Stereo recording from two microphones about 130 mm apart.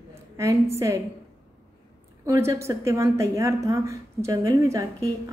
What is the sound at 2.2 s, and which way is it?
A woman's voice, 20° right (ahead or behind).